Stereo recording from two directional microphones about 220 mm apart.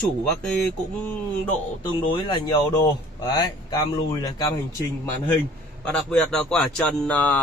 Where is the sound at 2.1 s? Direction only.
15° left (ahead or behind).